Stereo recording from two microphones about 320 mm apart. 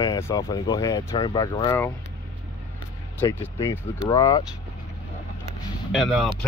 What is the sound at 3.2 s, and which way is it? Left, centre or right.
Speech, centre.